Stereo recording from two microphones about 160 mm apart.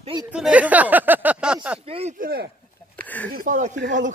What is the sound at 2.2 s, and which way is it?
Speech, 75° right (ahead or behind).